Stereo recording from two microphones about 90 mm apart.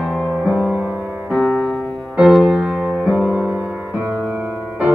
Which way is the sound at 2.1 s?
5° right (ahead or behind).